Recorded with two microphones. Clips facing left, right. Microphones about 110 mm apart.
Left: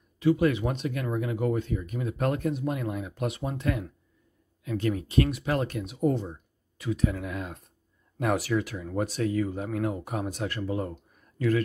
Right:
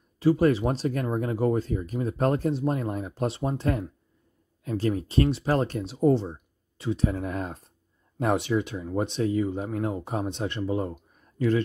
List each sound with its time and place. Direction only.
0.2 s speech: 35° right (ahead or behind)